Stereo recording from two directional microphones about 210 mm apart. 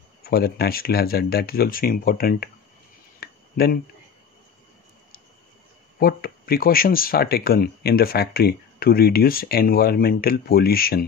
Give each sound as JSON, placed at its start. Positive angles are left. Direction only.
{"t": 0.2, "sound": "speech", "side_deg": 45}
{"t": 3.2, "sound": "a sound", "side_deg": 45}
{"t": 5.9, "sound": "speech", "side_deg": 45}